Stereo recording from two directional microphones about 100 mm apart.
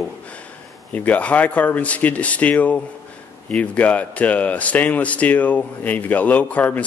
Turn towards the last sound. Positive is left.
turn(degrees=15)  # may be behind; listen again after turning